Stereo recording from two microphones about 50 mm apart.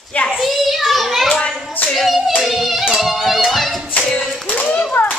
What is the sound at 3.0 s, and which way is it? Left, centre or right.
Music, centre.